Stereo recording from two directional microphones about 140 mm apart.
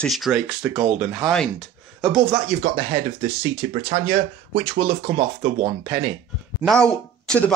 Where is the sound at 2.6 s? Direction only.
50° right (ahead or behind).